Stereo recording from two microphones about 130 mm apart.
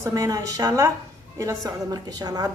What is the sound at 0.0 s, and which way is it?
A woman's voice, 25° right (ahead or behind).